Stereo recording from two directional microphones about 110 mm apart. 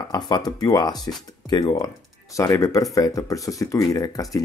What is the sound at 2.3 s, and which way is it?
Speech, 30° left (ahead or behind).